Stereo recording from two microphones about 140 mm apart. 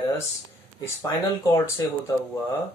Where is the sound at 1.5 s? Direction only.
25° left (ahead or behind).